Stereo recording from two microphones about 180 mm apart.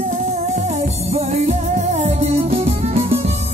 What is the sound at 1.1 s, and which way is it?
Music, 35° right (ahead or behind).